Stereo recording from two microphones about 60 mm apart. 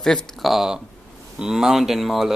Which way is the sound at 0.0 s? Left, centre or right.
Centre.